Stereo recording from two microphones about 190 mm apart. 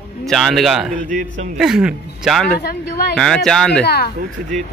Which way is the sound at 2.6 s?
55° left (ahead or behind).